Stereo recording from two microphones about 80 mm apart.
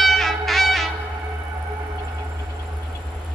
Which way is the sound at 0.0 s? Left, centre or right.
Centre.